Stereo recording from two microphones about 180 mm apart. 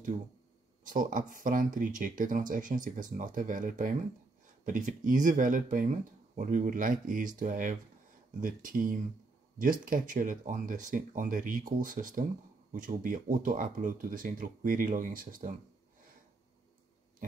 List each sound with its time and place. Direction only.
0.8 s speech: 50° right (ahead or behind)